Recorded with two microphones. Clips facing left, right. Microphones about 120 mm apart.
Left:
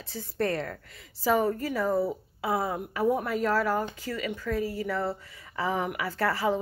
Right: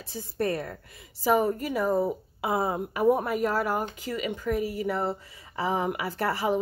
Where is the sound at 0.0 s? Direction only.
15° right (ahead or behind).